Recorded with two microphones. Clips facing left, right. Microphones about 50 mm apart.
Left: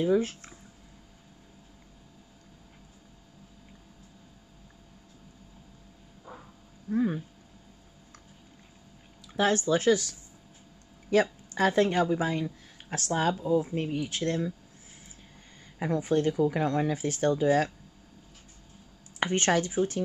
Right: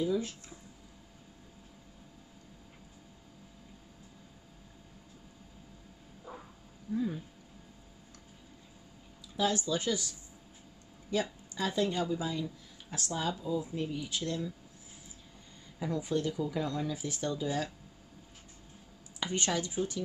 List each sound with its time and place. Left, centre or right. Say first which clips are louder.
0.0 s speech: left 6 dB; left
6.9 s speech: left 6 dB; left
9.4 s speech: left 6 dB; left
15.8 s speech: left 6 dB; left
19.1 s speech: left 7 dB; left